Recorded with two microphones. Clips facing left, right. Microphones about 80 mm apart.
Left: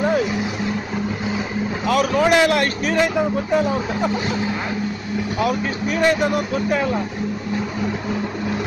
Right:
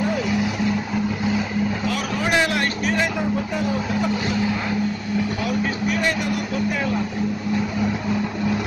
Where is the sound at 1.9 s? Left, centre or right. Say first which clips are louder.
Left 6 dB; left.